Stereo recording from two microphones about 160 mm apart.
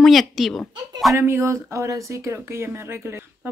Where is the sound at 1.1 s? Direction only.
15° right (ahead or behind).